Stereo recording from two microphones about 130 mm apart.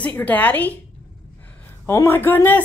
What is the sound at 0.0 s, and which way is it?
Speech, 10° left (ahead or behind).